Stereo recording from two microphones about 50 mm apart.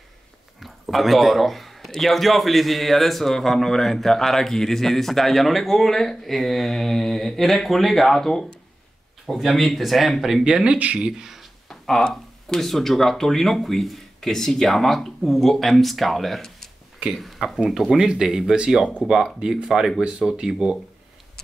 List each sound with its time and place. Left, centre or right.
0.6 s a man's voice: centre; by 11.1 s right
11.1 s speech: centre
11.7 s a man's voice: centre
20.0 s speech: centre